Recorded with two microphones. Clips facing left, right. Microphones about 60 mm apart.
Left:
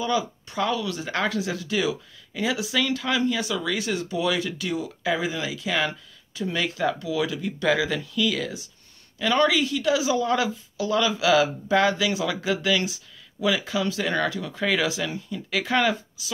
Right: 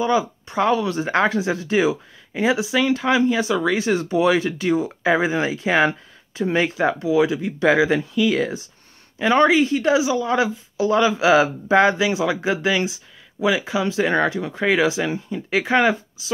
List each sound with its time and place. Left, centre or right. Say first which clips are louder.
0.0 s speech: right 5 dB; right
10.0 s speech: right 2 dB; centre
10.3 s speech: right 4 dB; right